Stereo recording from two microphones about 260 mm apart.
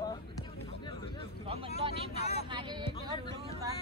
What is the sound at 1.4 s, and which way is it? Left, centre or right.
Vehicle, right.